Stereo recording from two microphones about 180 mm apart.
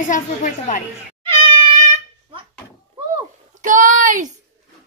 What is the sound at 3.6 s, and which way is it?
Speech, 45° right (ahead or behind).